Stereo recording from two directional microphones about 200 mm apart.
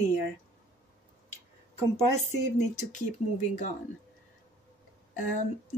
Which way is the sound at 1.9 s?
35° left (ahead or behind).